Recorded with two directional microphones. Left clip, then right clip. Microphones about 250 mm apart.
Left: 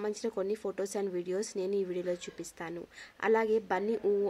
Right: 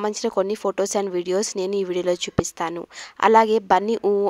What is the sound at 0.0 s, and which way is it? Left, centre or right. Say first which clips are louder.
Speech: right 11 dB; right.